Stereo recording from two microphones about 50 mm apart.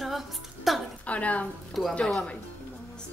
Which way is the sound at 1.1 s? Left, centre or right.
Left.